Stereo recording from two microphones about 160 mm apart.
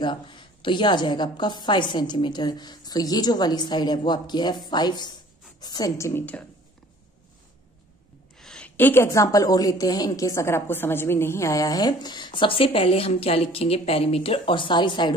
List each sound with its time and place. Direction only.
0.0 s a woman's voice: 30° left (ahead or behind); by 6.4 s 10° left (ahead or behind)
8.4 s a woman's voice: 5° left (ahead or behind); by 15.1 s 30° left (ahead or behind)